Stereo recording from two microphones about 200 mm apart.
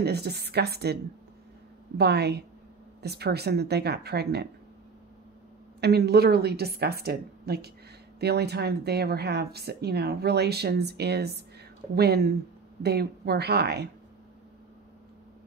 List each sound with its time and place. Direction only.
0.0 s a woman's voice: 55° right (ahead or behind)
2.0 s a woman's voice: 55° right (ahead or behind)
5.8 s a woman's voice: 55° right (ahead or behind)